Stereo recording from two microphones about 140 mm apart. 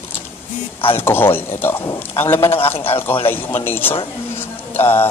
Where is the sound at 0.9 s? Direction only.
15° left (ahead or behind).